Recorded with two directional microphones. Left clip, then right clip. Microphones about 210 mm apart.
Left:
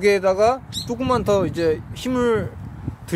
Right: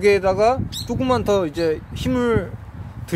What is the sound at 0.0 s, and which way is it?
Speech, 5° right (ahead or behind).